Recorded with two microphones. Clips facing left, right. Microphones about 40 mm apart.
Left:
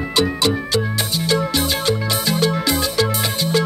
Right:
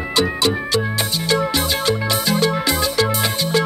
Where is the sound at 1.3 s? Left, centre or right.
Centre.